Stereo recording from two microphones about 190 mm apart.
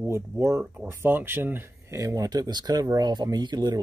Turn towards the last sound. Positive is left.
turn(degrees=-20)  # may be behind; listen again after turning